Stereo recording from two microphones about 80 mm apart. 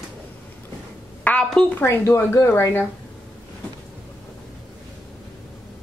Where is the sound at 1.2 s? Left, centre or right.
Centre.